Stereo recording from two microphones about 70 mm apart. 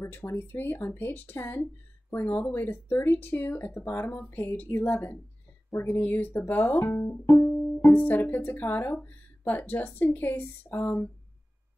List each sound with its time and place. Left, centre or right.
0.0 s speech: left
2.7 s speech: left
5.7 s speech: left
5.9 s speech: left
7.2 s music: left
7.9 s speech: left